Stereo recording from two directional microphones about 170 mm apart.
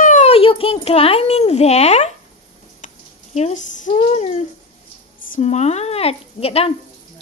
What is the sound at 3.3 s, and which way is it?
A child's voice, 45° left (ahead or behind).